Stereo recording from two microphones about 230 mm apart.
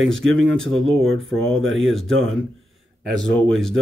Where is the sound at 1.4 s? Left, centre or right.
Right.